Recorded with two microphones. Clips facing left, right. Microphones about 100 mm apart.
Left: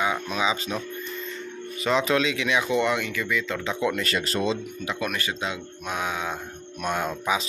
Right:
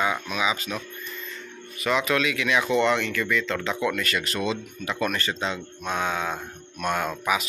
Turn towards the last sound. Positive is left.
turn(degrees=20)  # may be behind; listen again after turning